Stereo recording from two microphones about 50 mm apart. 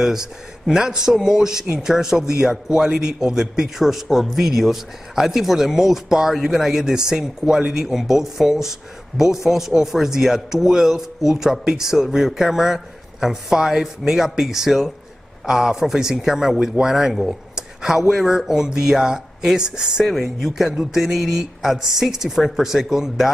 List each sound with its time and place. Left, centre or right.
0.0 s speech: centre
2.3 s speech: right; by 23.3 s centre